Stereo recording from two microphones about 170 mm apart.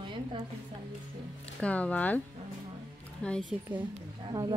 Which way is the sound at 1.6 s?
10° left (ahead or behind).